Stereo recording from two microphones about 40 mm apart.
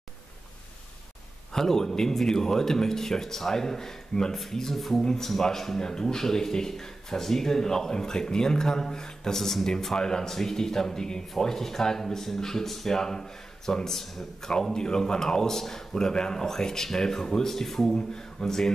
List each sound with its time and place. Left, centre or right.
1.5 s speech: centre